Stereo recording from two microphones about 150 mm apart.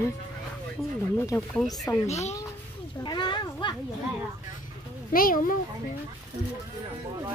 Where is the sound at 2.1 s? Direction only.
45° left (ahead or behind).